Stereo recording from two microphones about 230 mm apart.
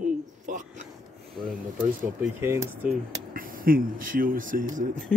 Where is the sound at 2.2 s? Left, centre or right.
Centre.